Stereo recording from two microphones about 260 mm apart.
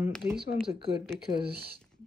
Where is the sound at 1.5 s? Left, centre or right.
Right.